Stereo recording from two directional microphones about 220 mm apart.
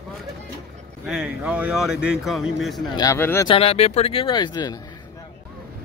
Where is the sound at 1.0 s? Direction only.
5° right (ahead or behind).